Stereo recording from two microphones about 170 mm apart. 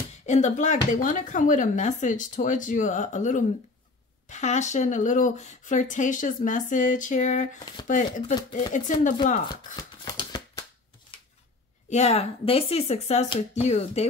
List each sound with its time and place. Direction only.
0.3 s speech: 45° left (ahead or behind)
9.8 s shuffling cards: 25° left (ahead or behind)
11.9 s speech: 40° left (ahead or behind)